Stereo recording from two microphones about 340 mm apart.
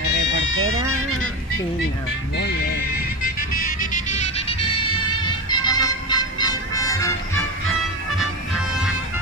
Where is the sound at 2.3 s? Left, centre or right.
Left; by 7.1 s centre.